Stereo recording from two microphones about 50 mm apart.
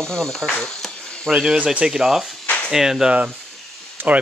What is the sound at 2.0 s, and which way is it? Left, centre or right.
Speech, centre.